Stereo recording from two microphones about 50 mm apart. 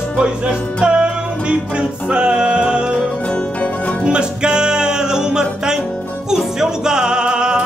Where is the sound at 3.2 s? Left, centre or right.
Left.